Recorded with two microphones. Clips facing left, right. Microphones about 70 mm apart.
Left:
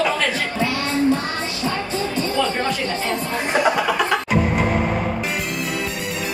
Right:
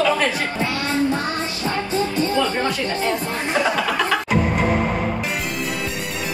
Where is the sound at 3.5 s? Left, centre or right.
Left.